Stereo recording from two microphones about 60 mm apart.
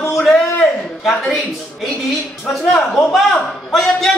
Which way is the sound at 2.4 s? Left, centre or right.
Centre.